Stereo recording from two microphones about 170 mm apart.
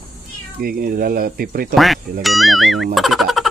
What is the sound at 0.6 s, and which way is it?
Speech, 60° right (ahead or behind).